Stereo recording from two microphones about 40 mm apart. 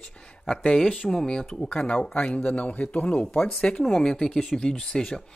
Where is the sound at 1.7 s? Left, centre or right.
Left.